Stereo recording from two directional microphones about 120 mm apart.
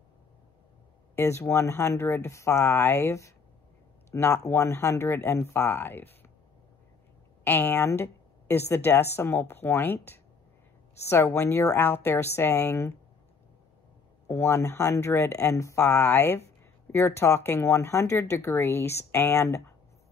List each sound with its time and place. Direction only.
1.1 s a woman's voice: 20° left (ahead or behind)
7.4 s a woman's voice: 15° left (ahead or behind)
14.2 s a woman's voice: 20° left (ahead or behind)